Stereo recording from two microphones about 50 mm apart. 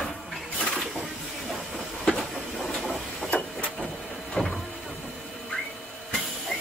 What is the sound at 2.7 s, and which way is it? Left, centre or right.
Vehicle, centre.